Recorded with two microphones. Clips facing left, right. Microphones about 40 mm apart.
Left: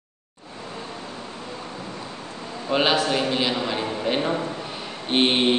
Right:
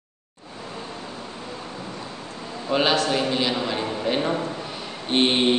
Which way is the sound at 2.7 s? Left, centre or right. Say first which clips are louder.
Even; centre.